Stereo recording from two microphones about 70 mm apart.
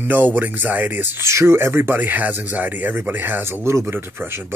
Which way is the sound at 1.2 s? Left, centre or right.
Right.